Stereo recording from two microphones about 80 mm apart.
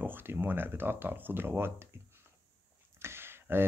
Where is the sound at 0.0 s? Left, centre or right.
Right.